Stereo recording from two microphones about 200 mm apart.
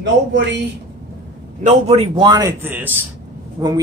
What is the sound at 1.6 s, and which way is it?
A man's voice, 35° right (ahead or behind).